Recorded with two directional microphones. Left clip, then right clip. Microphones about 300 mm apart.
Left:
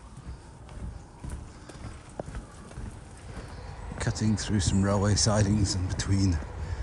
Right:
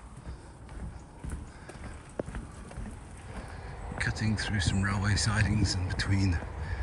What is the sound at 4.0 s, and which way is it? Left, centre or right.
Speech, centre.